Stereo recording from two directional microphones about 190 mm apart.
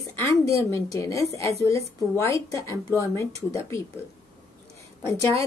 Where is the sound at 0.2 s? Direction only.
15° left (ahead or behind).